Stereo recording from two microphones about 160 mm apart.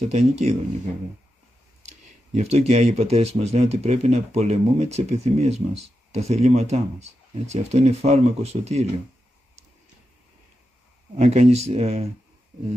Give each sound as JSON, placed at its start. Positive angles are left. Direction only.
{"t": 0.0, "sound": "speech", "side_deg": -45}
{"t": 2.3, "sound": "speech", "side_deg": -45}
{"t": 11.1, "sound": "speech", "side_deg": -45}